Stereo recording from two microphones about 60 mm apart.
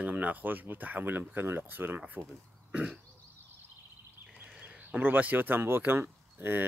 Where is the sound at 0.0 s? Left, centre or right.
Right.